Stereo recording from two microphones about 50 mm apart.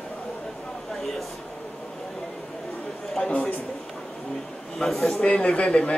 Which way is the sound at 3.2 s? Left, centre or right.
Left.